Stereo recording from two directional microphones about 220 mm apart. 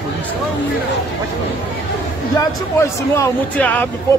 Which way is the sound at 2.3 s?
15° left (ahead or behind).